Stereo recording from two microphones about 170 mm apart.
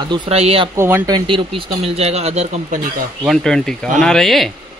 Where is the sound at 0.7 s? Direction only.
15° right (ahead or behind).